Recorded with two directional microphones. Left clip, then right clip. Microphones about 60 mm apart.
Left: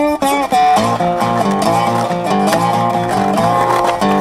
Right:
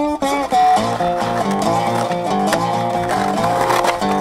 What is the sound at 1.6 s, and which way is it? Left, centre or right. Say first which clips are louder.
Music: left 3 dB; left.